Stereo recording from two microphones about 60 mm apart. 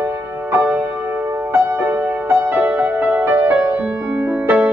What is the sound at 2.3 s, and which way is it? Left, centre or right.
Music, right.